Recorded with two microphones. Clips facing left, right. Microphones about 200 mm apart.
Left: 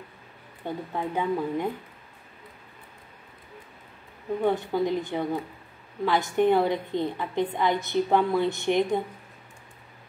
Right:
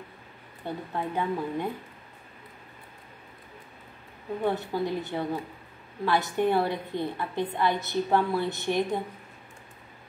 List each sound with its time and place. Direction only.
0.7 s a woman's voice: 15° left (ahead or behind)
4.5 s a woman's voice: 15° left (ahead or behind)